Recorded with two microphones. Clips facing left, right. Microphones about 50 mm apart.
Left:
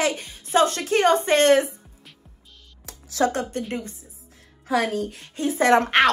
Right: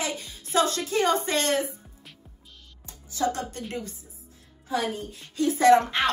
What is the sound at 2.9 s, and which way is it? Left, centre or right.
Music, left.